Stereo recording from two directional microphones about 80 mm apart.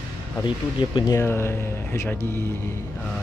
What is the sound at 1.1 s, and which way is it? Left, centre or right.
Speech, left.